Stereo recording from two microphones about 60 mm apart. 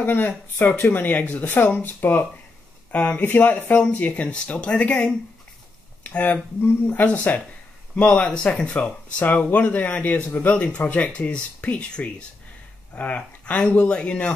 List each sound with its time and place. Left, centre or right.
0.0 s speech: left
7.9 s speech: centre